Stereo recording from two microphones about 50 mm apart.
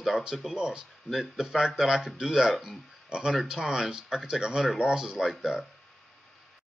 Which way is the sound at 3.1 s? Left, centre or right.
Centre.